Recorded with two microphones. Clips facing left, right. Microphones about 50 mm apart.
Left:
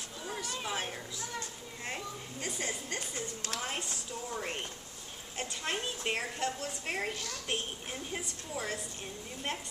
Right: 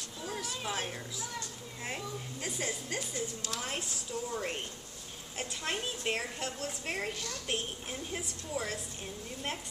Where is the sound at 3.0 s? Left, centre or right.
Left.